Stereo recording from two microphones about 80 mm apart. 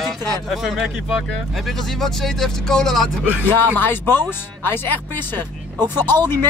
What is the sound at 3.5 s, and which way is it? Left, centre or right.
Speech, left.